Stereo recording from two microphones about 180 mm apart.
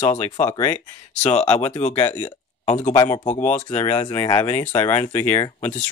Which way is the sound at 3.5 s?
40° left (ahead or behind).